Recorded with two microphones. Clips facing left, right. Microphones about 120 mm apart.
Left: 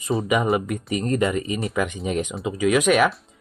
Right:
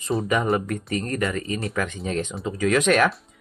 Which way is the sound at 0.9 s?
20° left (ahead or behind).